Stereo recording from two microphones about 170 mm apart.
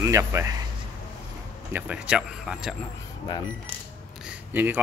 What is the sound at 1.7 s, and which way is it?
Speech, 10° right (ahead or behind).